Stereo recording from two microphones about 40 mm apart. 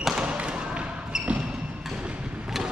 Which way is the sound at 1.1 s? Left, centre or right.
Centre.